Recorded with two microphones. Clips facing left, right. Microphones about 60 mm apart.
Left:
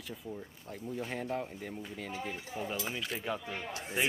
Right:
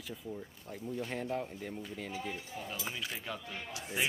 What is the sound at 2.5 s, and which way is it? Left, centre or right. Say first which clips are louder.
Speech: left 5 dB; centre.